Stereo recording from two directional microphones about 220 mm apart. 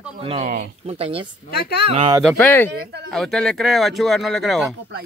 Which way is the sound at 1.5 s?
50° left (ahead or behind).